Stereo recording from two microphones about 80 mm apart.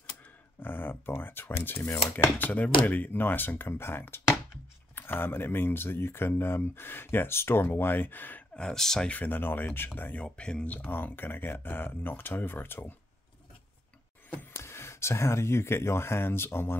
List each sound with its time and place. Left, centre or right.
0.6 s speech: left
8.5 s speech: centre
9.1 s speech: left
14.5 s speech: left